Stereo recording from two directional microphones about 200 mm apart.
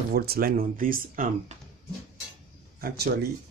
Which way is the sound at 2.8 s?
55° right (ahead or behind).